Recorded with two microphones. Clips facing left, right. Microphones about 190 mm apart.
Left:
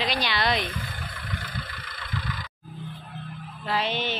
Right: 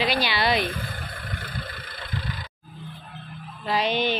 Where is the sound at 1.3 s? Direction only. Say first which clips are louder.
Even; 55° right (ahead or behind).